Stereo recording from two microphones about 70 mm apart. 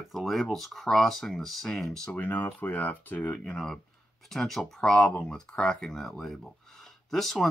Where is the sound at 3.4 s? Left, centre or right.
Centre.